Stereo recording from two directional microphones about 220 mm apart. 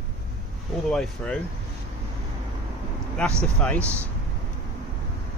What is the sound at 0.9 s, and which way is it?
Speech, 5° left (ahead or behind).